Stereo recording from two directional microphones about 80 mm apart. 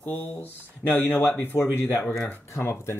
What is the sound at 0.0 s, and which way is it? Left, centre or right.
Speech, left.